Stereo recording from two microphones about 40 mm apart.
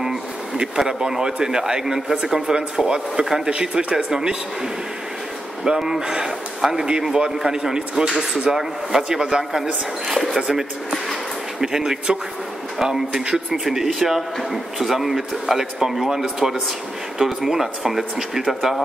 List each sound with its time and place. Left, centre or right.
0.6 s speech: centre
5.7 s speech: centre
11.6 s speech: centre